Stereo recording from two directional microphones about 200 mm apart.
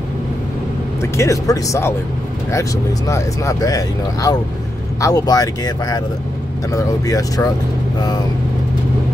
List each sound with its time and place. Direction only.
1.1 s speech: 15° left (ahead or behind)
3.1 s speech: 15° left (ahead or behind)